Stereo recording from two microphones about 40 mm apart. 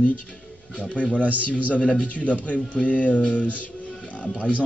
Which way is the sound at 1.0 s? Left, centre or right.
Left.